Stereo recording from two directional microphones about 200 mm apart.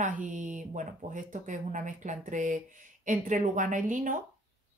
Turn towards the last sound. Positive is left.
turn(degrees=-40)  # may be behind; listen again after turning